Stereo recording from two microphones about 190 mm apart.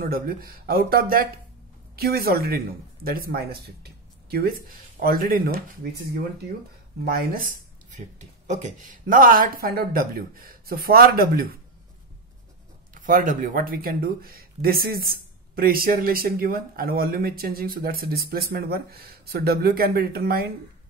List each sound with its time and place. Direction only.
0.0 s speech: 50° right (ahead or behind)
7.1 s speech: 50° right (ahead or behind)
12.9 s speech: 45° right (ahead or behind)